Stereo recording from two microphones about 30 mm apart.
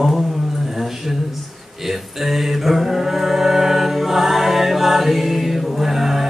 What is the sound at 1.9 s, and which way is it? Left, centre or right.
Music, centre.